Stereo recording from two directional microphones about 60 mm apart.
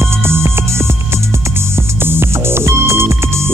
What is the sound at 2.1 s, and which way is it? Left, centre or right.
Music, right.